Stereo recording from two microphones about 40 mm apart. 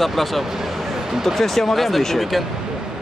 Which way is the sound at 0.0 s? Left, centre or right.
Centre.